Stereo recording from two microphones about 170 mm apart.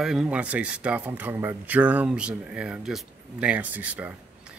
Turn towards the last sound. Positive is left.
turn(degrees=-10)  # may be behind; listen again after turning